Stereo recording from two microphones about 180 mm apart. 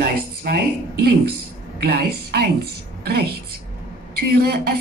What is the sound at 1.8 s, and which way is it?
A woman's voice, 60° right (ahead or behind).